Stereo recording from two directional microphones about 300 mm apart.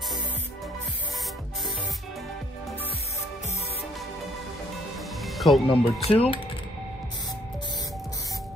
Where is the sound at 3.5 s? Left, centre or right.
Left.